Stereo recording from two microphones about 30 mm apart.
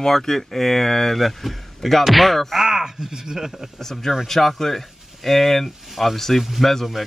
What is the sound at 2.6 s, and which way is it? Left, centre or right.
Speech, centre.